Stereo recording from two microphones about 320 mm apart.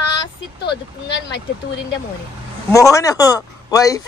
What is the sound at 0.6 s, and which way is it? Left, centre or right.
Speech, left.